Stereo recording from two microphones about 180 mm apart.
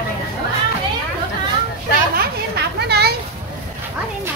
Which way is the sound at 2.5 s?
65° right (ahead or behind).